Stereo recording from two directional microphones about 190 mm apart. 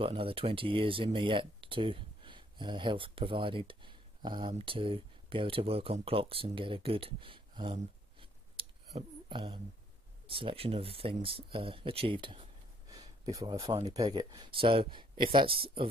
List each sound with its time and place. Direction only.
0.0 s speech: 30° right (ahead or behind)
12.9 s a sound: 20° right (ahead or behind)
13.9 s speech: 20° right (ahead or behind)